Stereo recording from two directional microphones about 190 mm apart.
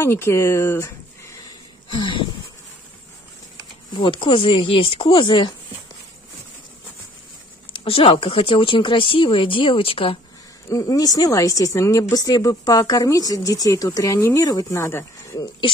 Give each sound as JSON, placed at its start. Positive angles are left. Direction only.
{"t": 0.0, "sound": "speech", "side_deg": 15}
{"t": 3.9, "sound": "speech", "side_deg": 25}
{"t": 7.7, "sound": "speech", "side_deg": 30}
{"t": 10.7, "sound": "speech", "side_deg": 20}